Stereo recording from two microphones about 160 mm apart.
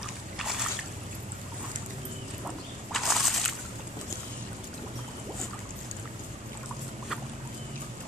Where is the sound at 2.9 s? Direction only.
Centre (ahead or behind).